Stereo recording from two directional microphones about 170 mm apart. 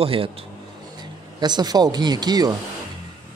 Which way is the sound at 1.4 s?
25° right (ahead or behind).